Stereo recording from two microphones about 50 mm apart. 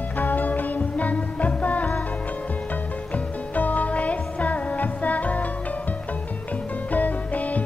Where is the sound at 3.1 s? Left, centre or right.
Left.